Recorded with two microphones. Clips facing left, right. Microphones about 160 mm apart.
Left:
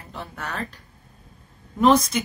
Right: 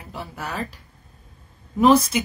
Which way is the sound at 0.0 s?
10° right (ahead or behind).